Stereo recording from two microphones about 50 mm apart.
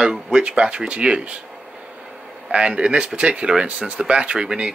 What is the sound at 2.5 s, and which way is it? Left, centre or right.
Speech, right.